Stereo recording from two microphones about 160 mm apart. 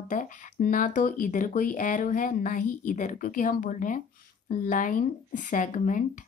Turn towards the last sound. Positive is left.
turn(degrees=55)  # may be behind; listen again after turning